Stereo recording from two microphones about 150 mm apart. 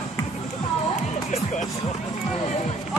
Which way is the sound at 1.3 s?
55° left (ahead or behind).